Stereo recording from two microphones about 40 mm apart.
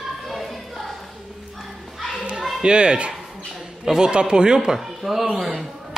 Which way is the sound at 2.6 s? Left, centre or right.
Right.